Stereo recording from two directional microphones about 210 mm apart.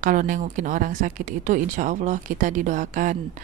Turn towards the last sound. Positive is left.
turn(degrees=-40)  # may be behind; listen again after turning